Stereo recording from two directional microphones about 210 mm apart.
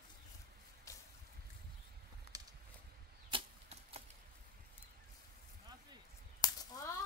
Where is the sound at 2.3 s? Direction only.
15° right (ahead or behind).